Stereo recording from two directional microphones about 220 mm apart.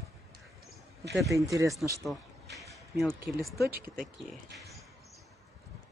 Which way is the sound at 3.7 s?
45° right (ahead or behind).